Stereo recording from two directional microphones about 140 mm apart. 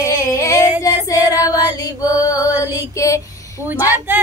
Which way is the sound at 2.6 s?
20° left (ahead or behind).